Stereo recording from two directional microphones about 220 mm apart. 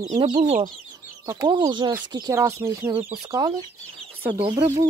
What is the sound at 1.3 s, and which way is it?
Speech, 20° right (ahead or behind).